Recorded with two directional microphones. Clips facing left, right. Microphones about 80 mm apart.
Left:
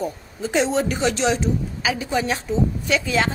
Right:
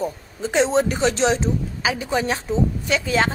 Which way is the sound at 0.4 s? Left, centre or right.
Right.